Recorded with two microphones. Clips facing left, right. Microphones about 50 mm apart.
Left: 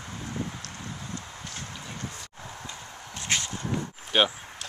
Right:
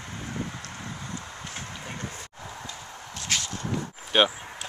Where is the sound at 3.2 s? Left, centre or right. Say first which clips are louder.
Left 1 dB; left.